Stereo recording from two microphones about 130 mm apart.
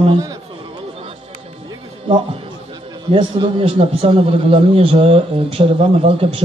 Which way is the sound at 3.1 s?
40° right (ahead or behind).